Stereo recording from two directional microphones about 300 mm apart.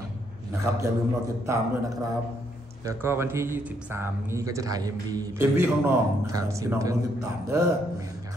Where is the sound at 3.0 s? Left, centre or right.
Centre.